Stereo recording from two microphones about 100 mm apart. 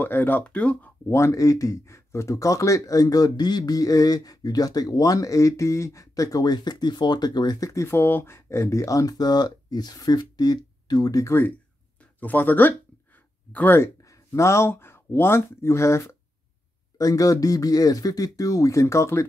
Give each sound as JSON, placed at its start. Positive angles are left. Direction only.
{"t": 0.0, "sound": "speech", "side_deg": 20}
{"t": 1.1, "sound": "speech", "side_deg": 30}
{"t": 12.0, "sound": "a sound", "side_deg": 15}
{"t": 14.0, "sound": "speech", "side_deg": 30}